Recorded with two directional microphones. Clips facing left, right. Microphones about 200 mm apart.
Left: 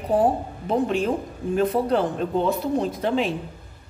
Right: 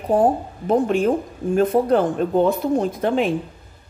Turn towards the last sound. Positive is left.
turn(degrees=-55)  # may be behind; listen again after turning